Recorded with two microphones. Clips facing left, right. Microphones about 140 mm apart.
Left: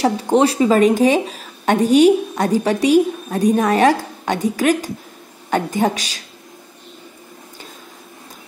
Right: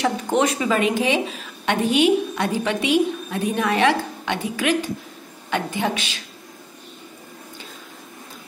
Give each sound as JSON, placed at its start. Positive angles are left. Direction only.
{"t": 0.0, "sound": "a woman's voice", "side_deg": 35}